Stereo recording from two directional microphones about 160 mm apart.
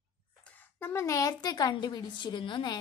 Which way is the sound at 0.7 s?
15° left (ahead or behind).